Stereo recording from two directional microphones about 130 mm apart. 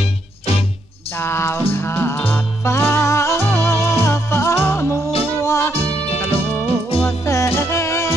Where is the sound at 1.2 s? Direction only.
20° left (ahead or behind).